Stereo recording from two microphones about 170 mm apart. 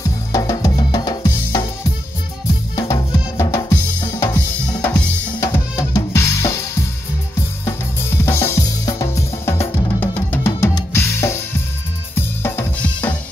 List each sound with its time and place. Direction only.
0.3 s music: 20° left (ahead or behind)
2.7 s drum: 20° left (ahead or behind)
4.8 s drum kit: 15° left (ahead or behind)
8.3 s drum kit: 15° left (ahead or behind)